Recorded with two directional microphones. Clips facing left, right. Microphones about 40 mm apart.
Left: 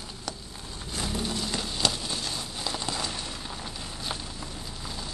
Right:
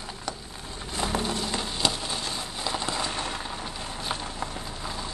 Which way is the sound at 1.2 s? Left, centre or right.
Centre.